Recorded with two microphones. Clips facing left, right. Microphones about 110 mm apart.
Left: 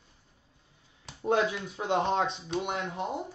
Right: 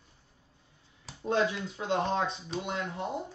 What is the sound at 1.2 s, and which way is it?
Speech, 15° left (ahead or behind).